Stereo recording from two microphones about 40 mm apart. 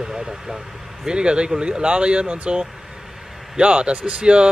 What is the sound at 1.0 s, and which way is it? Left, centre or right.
Speech, right.